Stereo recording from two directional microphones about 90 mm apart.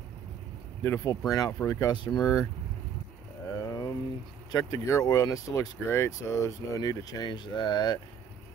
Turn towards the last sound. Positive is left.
turn(degrees=50)  # may be behind; listen again after turning